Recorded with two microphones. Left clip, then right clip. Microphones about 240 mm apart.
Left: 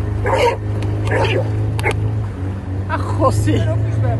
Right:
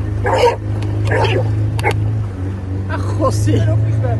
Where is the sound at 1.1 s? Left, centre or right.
Centre.